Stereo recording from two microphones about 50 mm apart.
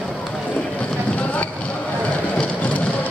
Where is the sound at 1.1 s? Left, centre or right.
Left.